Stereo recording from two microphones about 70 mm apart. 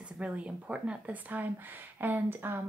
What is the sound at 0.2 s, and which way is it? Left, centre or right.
Speech, centre.